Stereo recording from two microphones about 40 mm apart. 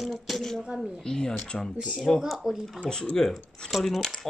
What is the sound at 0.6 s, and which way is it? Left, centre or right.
Speech, right.